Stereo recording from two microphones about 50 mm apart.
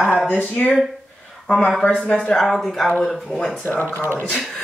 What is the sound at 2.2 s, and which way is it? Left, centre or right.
A woman's voice, centre.